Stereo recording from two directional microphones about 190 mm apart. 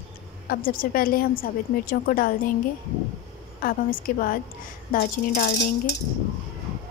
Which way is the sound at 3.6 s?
50° left (ahead or behind).